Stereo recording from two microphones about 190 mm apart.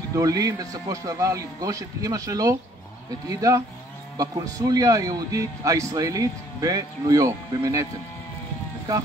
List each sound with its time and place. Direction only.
0.1 s a man's voice: 20° right (ahead or behind)